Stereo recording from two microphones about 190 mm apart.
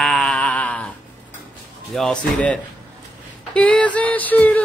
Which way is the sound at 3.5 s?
5° left (ahead or behind).